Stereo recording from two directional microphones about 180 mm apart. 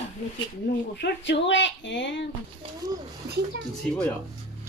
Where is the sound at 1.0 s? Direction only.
85° left.